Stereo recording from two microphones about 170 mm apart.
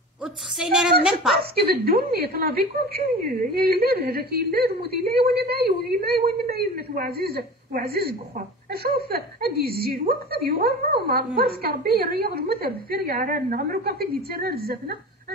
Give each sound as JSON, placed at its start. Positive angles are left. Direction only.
{"t": 0.2, "sound": "a woman's voice", "side_deg": -5}
{"t": 1.4, "sound": "speech", "side_deg": -65}